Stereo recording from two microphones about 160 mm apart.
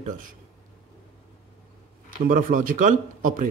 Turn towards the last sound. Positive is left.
turn(degrees=-60)  # may be behind; listen again after turning